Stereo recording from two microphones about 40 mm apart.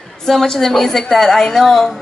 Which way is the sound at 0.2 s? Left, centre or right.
Centre.